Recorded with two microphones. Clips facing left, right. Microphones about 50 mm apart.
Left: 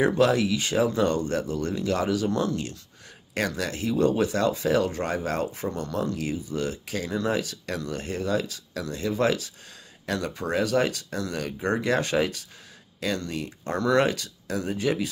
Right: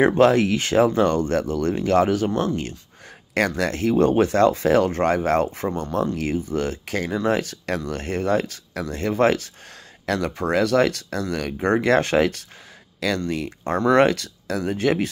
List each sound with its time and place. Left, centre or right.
0.0 s speech: right
2.3 s speech: right
3.3 s speech: right
5.7 s speech: right
6.1 s speech: right
13.3 s speech: right